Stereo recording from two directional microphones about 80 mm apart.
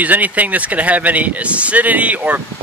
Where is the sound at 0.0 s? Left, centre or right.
Right.